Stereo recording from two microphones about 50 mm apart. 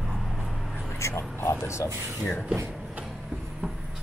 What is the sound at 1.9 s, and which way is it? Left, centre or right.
Speech, right.